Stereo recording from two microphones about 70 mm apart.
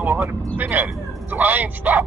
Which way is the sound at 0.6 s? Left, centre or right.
Right.